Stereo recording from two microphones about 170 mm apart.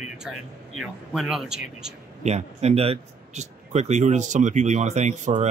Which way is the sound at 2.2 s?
40° right (ahead or behind).